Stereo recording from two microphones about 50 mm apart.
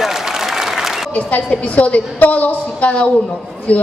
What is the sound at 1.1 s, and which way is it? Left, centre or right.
A woman's voice, left.